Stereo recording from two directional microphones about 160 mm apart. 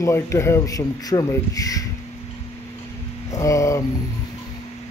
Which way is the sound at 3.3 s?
20° left (ahead or behind).